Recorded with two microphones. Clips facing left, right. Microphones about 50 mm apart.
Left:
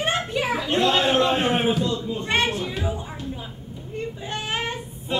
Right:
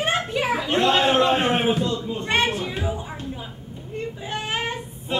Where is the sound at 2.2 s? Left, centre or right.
Centre.